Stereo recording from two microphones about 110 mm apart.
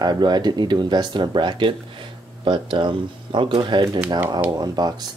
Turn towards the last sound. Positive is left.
turn(degrees=-40)  # may be behind; listen again after turning